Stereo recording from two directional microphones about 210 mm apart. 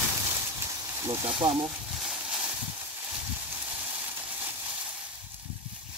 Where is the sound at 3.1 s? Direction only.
5° right (ahead or behind).